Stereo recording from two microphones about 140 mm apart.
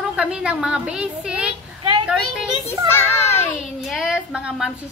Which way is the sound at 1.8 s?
35° right (ahead or behind).